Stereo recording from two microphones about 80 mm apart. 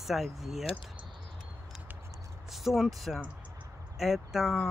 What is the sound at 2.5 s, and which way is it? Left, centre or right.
Speech, centre.